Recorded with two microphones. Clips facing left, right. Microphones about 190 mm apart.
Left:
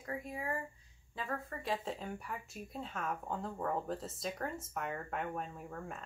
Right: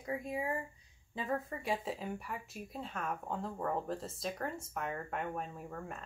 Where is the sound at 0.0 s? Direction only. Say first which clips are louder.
Right 4 dB; 15° right (ahead or behind).